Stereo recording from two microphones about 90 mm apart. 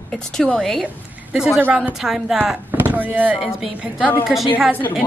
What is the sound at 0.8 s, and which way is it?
A woman's voice, 10° right (ahead or behind).